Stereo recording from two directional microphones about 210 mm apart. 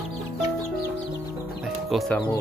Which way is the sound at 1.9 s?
Centre (ahead or behind).